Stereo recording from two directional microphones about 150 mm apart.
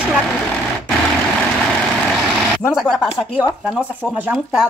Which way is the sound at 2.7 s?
Centre (ahead or behind).